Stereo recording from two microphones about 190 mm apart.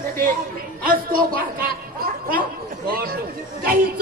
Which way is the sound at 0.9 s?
50° right (ahead or behind).